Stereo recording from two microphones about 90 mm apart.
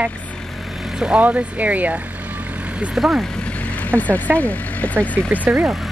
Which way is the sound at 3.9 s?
20° right (ahead or behind).